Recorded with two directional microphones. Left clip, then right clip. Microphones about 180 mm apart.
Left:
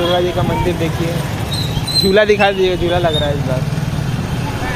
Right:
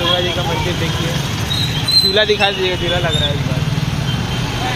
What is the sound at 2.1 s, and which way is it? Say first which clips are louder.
Speech: left 3 dB; 70° left (ahead or behind).